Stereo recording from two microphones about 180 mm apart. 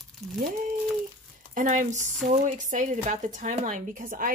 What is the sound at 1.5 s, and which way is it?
Speech, 45° right (ahead or behind).